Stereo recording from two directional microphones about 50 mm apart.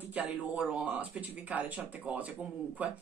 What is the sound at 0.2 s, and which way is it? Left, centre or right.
Speech, right.